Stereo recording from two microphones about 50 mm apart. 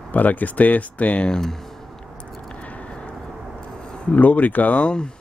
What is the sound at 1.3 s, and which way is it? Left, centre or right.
Speech, centre.